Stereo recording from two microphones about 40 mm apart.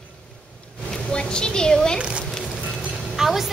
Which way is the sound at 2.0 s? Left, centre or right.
Right.